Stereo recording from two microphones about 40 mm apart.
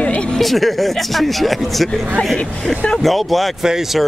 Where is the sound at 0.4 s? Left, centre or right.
Centre.